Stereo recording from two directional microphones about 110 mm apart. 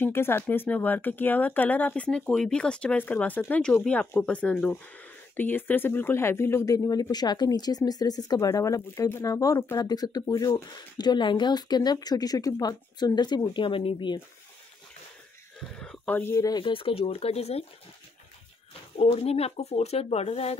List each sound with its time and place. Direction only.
0.0 s speech: 20° left (ahead or behind); by 14.2 s 45° left (ahead or behind)
15.7 s a sound: 10° left (ahead or behind)
16.2 s speech: 25° left (ahead or behind)
16.4 s speech: 45° left (ahead or behind); by 17.6 s 70° left (ahead or behind)
18.9 s speech: 65° left (ahead or behind)